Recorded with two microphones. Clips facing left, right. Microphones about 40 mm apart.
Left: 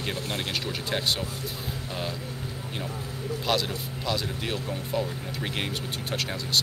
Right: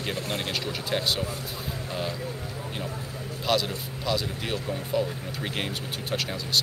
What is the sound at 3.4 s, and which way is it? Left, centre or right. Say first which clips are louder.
Speech: right 2 dB; centre.